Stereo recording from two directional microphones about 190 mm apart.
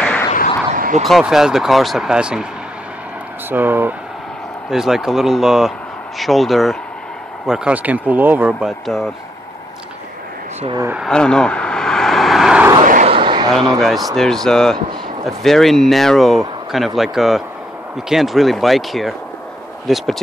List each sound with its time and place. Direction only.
0.0 s a sound: 5° left (ahead or behind)
0.7 s bow-wow: 45° right (ahead or behind)
1.0 s speech: centre (ahead or behind)
3.4 s speech: 10° right (ahead or behind)
10.8 s speech: 10° right (ahead or behind)
11.1 s vehicle: 5° left (ahead or behind)
12.8 s vehicle: 45° right (ahead or behind)
13.1 s a sound: 25° right (ahead or behind)
13.7 s speech: centre (ahead or behind)